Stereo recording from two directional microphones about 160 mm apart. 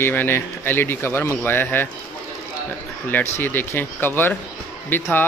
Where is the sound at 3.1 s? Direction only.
10° left (ahead or behind).